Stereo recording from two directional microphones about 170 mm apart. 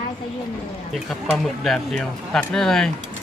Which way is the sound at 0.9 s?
Centre (ahead or behind).